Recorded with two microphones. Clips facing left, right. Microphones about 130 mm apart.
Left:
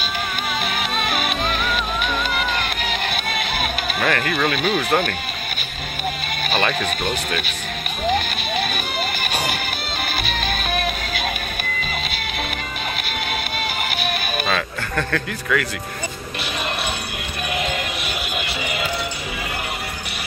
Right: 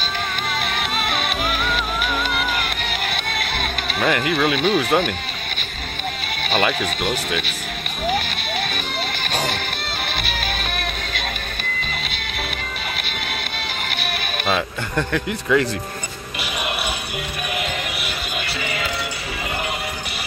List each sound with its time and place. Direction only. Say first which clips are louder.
0.9 s music: left 1 dB; centre (ahead or behind)
2.3 s music: even; centre (ahead or behind)
4.3 s speech: right 2 dB; centre (ahead or behind)
6.5 s speech: right 1 dB; centre (ahead or behind)
9.2 s music: even; 10° left (ahead or behind)
14.5 s speech: right 5 dB; 15° right (ahead or behind)